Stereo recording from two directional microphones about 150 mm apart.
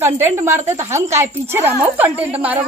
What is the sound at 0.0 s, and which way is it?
A woman's voice, 15° right (ahead or behind).